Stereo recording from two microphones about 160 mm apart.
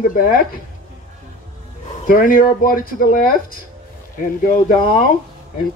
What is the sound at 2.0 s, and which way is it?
A man's voice, 60° left (ahead or behind).